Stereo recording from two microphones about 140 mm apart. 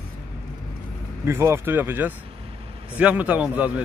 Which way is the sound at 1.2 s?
20° right (ahead or behind).